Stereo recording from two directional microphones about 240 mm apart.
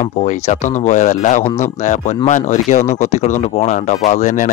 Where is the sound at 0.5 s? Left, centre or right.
Left.